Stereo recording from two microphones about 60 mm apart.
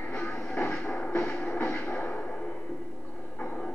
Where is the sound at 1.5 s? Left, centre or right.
Left.